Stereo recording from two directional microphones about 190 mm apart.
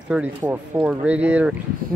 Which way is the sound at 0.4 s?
10° right (ahead or behind).